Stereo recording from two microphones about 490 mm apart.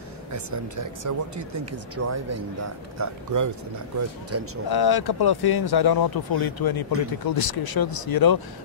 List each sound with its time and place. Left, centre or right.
0.3 s speech: right
4.6 s speech: left